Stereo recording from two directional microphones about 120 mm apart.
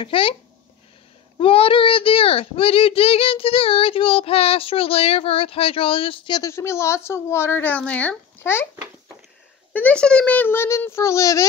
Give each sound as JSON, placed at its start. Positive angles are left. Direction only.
{"t": 0.0, "sound": "a child's voice", "side_deg": 50}
{"t": 1.4, "sound": "a child's voice", "side_deg": 50}
{"t": 6.4, "sound": "speech", "side_deg": 25}
{"t": 9.7, "sound": "a child's voice", "side_deg": 10}